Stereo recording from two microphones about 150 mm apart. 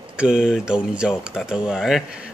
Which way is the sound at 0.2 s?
5° right (ahead or behind).